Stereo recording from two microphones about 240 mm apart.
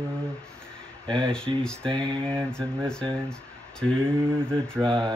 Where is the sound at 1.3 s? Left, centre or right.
Centre.